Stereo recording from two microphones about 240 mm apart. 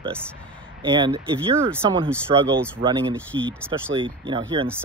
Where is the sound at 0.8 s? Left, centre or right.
Centre.